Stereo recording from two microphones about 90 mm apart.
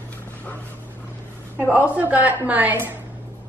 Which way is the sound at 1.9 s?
20° right (ahead or behind).